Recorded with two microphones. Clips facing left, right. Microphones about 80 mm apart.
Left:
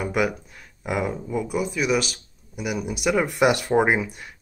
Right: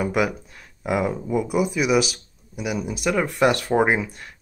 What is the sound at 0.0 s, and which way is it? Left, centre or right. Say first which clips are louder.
Speech: right 1 dB; centre.